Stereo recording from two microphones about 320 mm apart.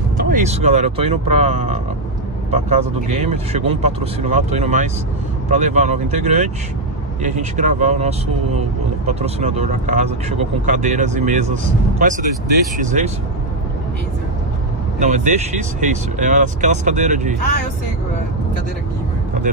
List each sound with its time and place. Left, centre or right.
0.2 s speech: right
10.6 s speech: right
15.0 s speech: right